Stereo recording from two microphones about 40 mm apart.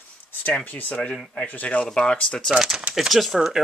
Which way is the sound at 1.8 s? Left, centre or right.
Left.